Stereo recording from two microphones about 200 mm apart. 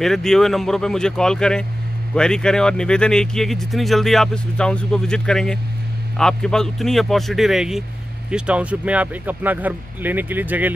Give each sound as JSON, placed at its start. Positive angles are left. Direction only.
{"t": 0.0, "sound": "speech", "side_deg": 0}